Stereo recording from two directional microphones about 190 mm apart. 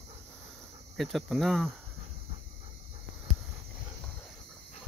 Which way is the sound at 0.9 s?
Centre (ahead or behind).